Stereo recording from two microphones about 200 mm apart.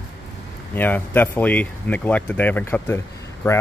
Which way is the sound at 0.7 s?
10° left (ahead or behind).